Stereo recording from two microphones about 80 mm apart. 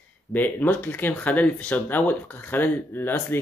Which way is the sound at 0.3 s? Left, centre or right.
Left.